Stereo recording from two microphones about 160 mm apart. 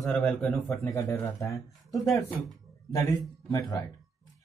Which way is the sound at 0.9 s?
20° left (ahead or behind).